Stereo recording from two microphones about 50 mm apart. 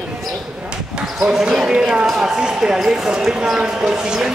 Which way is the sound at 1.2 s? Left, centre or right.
Centre.